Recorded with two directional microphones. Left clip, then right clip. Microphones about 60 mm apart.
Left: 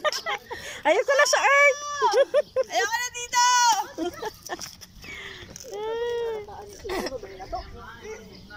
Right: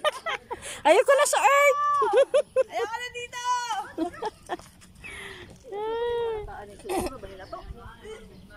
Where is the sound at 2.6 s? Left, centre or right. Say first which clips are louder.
Left 5 dB; centre.